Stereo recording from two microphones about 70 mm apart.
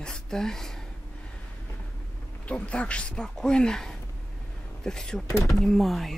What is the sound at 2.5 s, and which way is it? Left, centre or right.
A woman's voice, centre.